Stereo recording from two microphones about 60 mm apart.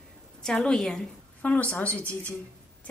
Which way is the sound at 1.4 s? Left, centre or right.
Left.